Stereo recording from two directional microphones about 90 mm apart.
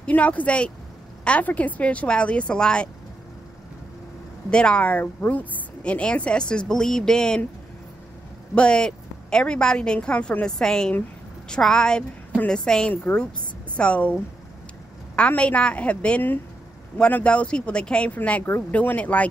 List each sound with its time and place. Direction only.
0.0 s a woman's voice: 15° left (ahead or behind)
4.5 s a woman's voice: 10° left (ahead or behind)
8.5 s a woman's voice: 10° left (ahead or behind)
12.9 s a woman's voice: 20° left (ahead or behind)
15.1 s a woman's voice: 15° left (ahead or behind)